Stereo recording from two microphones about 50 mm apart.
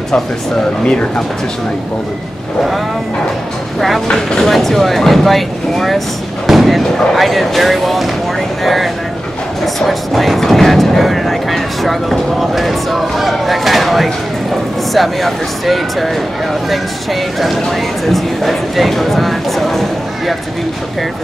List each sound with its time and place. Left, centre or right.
0.8 s speech: centre
4.4 s speech: centre